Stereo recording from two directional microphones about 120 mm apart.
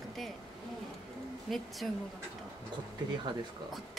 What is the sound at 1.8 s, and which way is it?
Speech, 5° left (ahead or behind).